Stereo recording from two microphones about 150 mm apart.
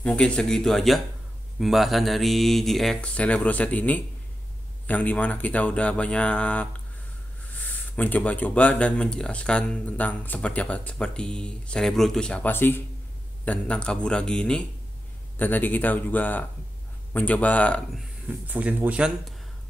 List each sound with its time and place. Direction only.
0.0 s speech: 5° left (ahead or behind)
18.5 s speech: 10° right (ahead or behind)